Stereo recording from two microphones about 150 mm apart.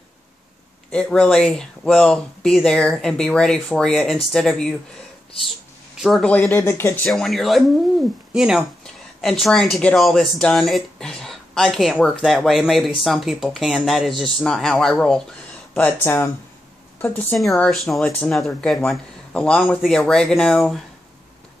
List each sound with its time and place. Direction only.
0.9 s speech: 5° left (ahead or behind)
5.9 s speech: centre (ahead or behind)
6.3 s speech: 20° left (ahead or behind)
7.1 s speech: centre (ahead or behind)